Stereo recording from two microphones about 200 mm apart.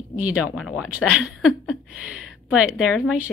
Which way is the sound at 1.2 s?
Centre (ahead or behind).